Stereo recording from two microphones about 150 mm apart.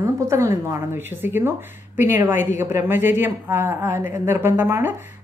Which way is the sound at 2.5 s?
15° right (ahead or behind).